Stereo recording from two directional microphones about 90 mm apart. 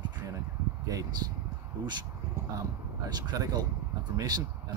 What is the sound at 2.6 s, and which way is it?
Speech, 45° right (ahead or behind).